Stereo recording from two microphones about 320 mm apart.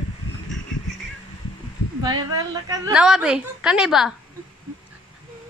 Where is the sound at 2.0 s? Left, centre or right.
Centre.